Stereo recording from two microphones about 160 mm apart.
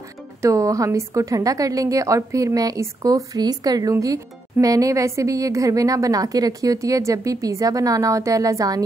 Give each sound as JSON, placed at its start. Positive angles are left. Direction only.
{"t": 0.4, "sound": "a woman's voice", "side_deg": -20}